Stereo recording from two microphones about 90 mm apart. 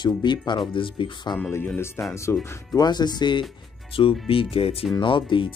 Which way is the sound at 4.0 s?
90° left.